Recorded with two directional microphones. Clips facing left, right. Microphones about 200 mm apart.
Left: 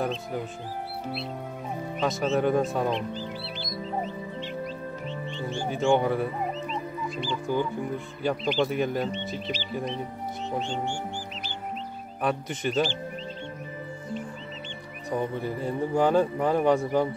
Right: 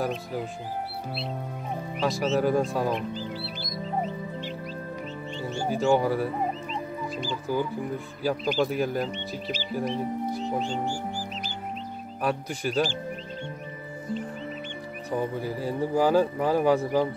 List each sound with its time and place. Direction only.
2.0 s speech: centre (ahead or behind)
5.7 s speech: centre (ahead or behind)
6.7 s chicken: 40° right (ahead or behind)
8.2 s speech: 5° right (ahead or behind)
10.4 s speech: 35° right (ahead or behind)
12.2 s speech: centre (ahead or behind)
15.0 s speech: 5° right (ahead or behind)